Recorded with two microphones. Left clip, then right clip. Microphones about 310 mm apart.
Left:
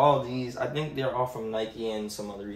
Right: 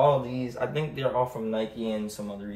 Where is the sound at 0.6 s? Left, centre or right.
Centre.